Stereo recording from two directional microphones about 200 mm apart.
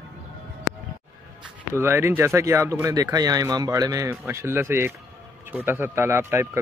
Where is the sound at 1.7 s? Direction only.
10° right (ahead or behind).